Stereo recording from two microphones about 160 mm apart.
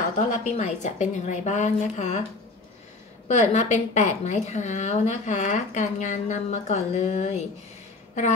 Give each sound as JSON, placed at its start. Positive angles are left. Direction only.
{"t": 0.3, "sound": "a woman's voice", "side_deg": 50}
{"t": 3.3, "sound": "a woman's voice", "side_deg": 45}